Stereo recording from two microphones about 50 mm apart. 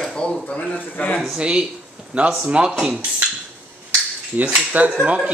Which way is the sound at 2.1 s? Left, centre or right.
Right.